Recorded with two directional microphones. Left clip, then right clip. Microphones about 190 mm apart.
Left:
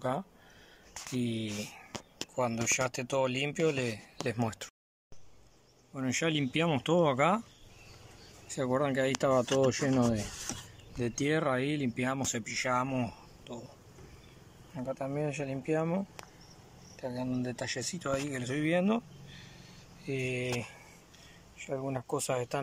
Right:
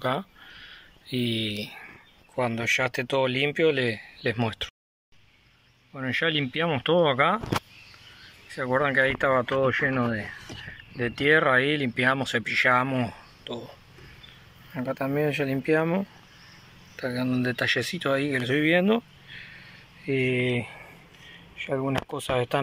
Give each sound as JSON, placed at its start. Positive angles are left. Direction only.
{"t": 0.0, "sound": "a sound", "side_deg": 10}
{"t": 2.3, "sound": "speech", "side_deg": 10}
{"t": 5.9, "sound": "speech", "side_deg": 10}
{"t": 8.5, "sound": "speech", "side_deg": 15}
{"t": 9.4, "sound": "speech", "side_deg": -5}
{"t": 9.7, "sound": "speech", "side_deg": 15}
{"t": 14.7, "sound": "speech", "side_deg": 10}